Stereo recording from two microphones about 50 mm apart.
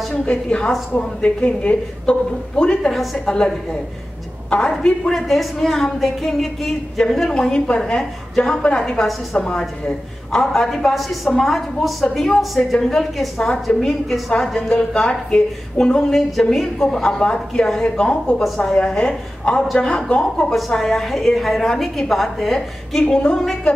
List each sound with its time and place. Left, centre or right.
0.1 s a woman's voice: left
2.9 s a woman's voice: centre
3.3 s a woman's voice: centre
5.1 s a woman's voice: centre
9.0 s a woman's voice: centre
9.5 s a woman's voice: centre
16.1 s a woman's voice: centre
20.7 s a woman's voice: centre